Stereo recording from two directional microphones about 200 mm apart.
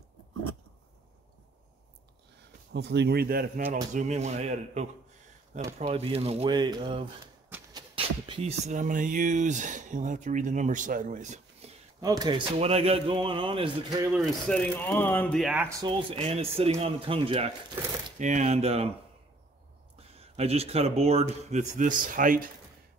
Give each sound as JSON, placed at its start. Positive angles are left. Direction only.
{"t": 2.7, "sound": "speech", "side_deg": -60}
{"t": 3.9, "sound": "speech", "side_deg": -35}
{"t": 12.0, "sound": "speech", "side_deg": -20}
{"t": 14.1, "sound": "speech", "side_deg": 0}
{"t": 14.8, "sound": "speech", "side_deg": 10}
{"t": 15.8, "sound": "speech", "side_deg": -25}
{"t": 20.0, "sound": "speech", "side_deg": -30}